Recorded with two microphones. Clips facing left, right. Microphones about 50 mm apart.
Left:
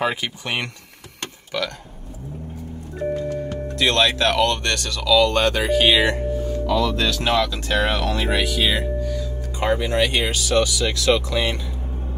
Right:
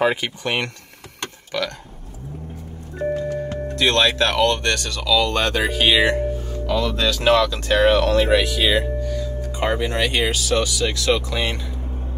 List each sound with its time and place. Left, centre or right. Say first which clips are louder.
0.0 s speech: right 3 dB; centre
3.7 s speech: right 1 dB; centre
7.0 s speech: right 3 dB; centre